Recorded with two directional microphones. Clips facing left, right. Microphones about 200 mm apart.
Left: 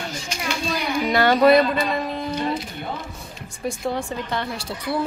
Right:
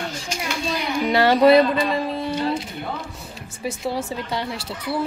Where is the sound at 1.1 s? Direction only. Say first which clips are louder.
Right 1 dB; 25° right (ahead or behind).